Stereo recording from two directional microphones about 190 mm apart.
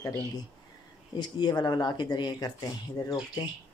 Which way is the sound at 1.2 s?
20° left (ahead or behind).